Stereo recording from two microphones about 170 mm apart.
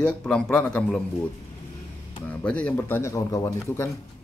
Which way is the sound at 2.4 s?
5° left (ahead or behind).